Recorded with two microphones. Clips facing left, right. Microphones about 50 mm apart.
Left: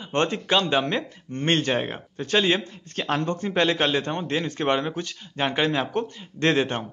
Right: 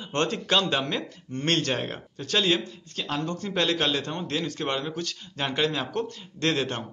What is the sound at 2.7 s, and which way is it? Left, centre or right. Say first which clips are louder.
A man's voice: left 5 dB; left.